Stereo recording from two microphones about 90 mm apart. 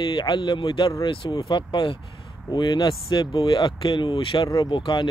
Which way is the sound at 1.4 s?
60° left (ahead or behind).